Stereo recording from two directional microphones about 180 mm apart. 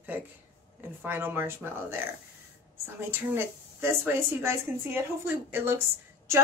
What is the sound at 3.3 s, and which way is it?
A woman's voice, 10° right (ahead or behind).